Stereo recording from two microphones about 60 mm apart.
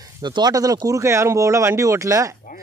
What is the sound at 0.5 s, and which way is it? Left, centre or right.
Speech, right.